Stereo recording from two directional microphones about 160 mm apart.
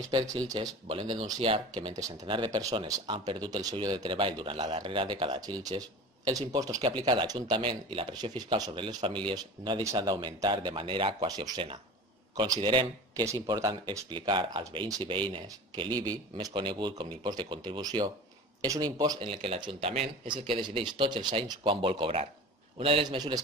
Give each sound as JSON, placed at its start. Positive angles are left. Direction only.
{"t": 0.5, "sound": "speech", "side_deg": -30}
{"t": 13.2, "sound": "speech", "side_deg": -20}